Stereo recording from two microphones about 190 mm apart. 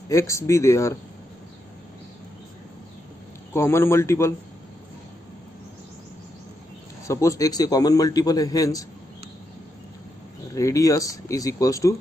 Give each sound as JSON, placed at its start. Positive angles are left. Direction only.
{"t": 0.1, "sound": "speech", "side_deg": 15}
{"t": 3.5, "sound": "speech", "side_deg": 15}
{"t": 7.1, "sound": "a man's voice", "side_deg": 15}
{"t": 10.5, "sound": "speech", "side_deg": 15}